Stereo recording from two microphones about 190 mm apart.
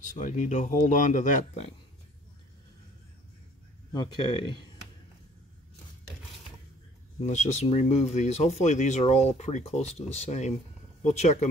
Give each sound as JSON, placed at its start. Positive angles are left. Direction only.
{"t": 0.0, "sound": "speech", "side_deg": 40}
{"t": 3.9, "sound": "speech", "side_deg": 25}
{"t": 7.2, "sound": "speech", "side_deg": 35}